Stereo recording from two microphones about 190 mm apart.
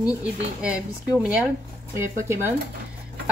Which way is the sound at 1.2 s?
5° right (ahead or behind).